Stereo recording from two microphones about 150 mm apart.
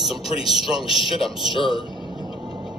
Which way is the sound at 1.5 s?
35° left (ahead or behind).